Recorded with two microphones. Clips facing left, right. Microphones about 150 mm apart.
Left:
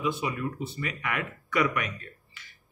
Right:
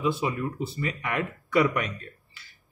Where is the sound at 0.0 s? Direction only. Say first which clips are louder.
Right 3 dB; 30° right (ahead or behind).